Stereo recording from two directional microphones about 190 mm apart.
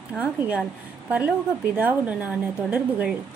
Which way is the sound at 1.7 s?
10° right (ahead or behind).